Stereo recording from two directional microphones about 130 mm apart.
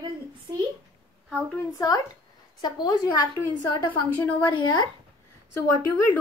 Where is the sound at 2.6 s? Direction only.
35° left (ahead or behind).